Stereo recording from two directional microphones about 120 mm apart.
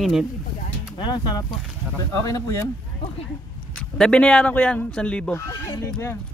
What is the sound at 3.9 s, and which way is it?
Speech, 5° left (ahead or behind).